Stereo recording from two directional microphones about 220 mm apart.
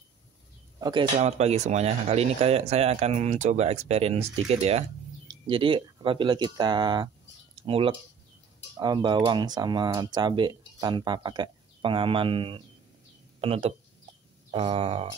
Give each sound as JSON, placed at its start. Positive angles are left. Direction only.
{"t": 0.7, "sound": "speech", "side_deg": -20}
{"t": 1.2, "sound": "speech", "side_deg": -30}